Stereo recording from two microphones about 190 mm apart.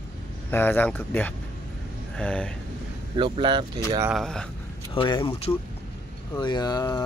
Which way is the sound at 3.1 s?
25° right (ahead or behind).